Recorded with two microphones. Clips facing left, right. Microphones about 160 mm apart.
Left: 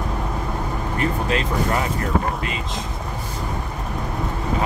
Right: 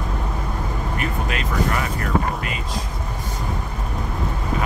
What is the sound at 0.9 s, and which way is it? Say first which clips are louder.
Vehicle: left 6 dB; 30° left (ahead or behind).